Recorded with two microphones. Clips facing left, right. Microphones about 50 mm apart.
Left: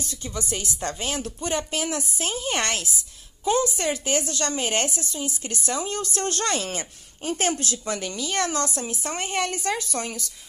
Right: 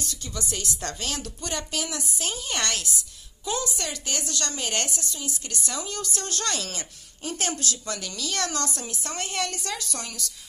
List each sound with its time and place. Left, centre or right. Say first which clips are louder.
0.0 s a woman's voice: left 2 dB; left